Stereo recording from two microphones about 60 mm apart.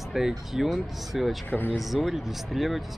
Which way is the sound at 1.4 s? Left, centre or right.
Left.